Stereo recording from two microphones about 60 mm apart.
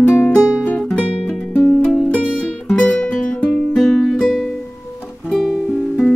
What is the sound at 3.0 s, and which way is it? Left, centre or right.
Music, centre.